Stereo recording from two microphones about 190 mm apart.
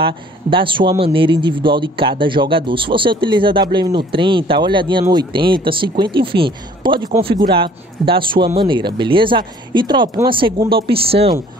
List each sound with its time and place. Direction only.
0.0 s a man's voice: 25° right (ahead or behind)